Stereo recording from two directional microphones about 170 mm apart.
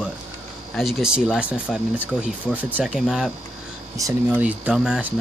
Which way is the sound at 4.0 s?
15° right (ahead or behind).